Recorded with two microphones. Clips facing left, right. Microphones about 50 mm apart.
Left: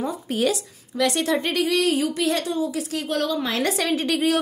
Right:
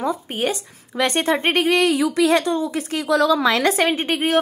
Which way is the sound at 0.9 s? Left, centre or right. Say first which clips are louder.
Right 2 dB; right.